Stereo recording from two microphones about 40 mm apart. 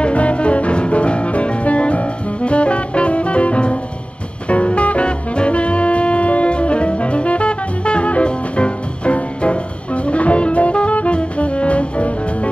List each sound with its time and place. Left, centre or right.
0.0 s music: left